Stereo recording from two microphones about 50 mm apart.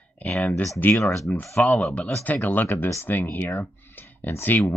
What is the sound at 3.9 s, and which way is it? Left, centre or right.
Clicking, left.